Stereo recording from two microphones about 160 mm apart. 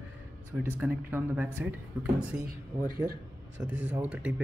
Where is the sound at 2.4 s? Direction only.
65° right (ahead or behind).